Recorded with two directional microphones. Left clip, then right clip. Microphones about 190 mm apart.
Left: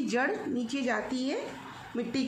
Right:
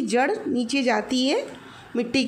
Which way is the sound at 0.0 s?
20° right (ahead or behind).